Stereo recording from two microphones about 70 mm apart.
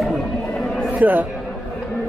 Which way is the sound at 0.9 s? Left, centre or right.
Right.